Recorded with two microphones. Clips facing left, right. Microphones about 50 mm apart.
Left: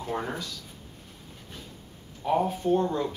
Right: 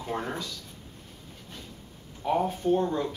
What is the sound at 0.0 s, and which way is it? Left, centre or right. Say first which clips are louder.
Speech: left 1 dB; centre.